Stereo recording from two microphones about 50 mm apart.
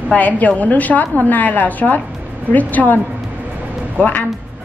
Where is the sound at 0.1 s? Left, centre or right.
Left.